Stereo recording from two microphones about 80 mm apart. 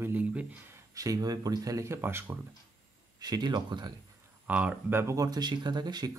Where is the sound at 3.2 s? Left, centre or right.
Right.